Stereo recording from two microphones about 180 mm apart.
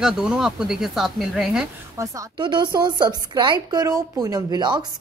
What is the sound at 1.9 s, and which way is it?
A woman's voice, 25° right (ahead or behind).